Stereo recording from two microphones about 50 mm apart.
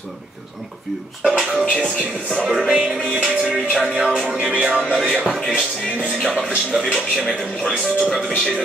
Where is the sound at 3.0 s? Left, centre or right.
Right.